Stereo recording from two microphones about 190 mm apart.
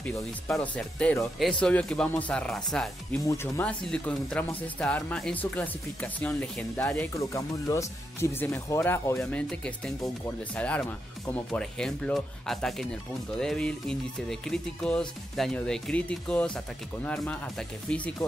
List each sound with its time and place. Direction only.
0.0 s music: 10° left (ahead or behind)
3.3 s speech: 10° left (ahead or behind)
7.2 s speech: 15° left (ahead or behind)
10.0 s music: 10° left (ahead or behind)